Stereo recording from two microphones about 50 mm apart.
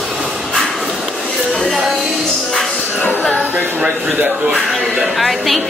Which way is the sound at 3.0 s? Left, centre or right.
Left.